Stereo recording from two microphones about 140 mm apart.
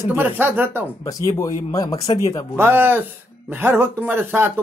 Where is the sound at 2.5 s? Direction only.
15° right (ahead or behind).